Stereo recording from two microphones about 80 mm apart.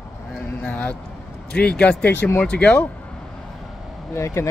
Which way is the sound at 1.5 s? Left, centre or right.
Centre.